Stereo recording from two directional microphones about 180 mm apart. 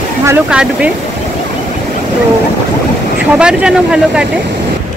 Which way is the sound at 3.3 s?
5° right (ahead or behind).